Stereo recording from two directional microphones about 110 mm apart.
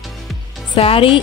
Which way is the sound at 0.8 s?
55° left (ahead or behind).